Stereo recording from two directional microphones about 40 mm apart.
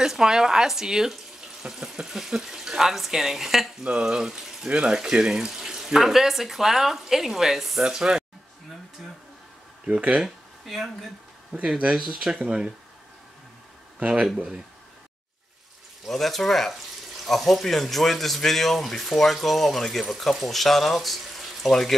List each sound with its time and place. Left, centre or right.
0.0 s speech: centre
7.8 s speech: centre
9.8 s speech: right
10.2 s a sound: centre
11.6 s speech: centre
13.9 s speech: right
16.1 s speech: centre